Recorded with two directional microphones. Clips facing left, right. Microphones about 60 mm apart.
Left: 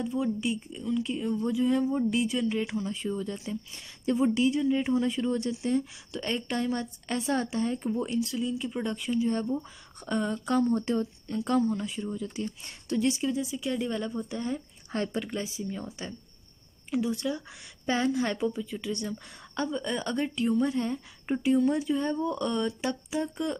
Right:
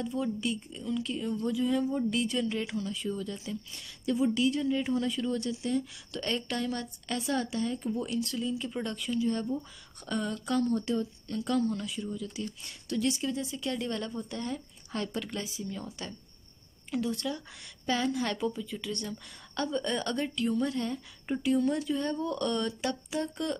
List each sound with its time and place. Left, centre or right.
0.0 s speech: centre
2.8 s a woman's voice: left
8.2 s speech: centre
8.8 s a woman's voice: left
11.9 s a woman's voice: left